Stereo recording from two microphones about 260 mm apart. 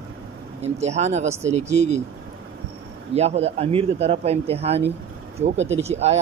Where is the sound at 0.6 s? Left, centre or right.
Right.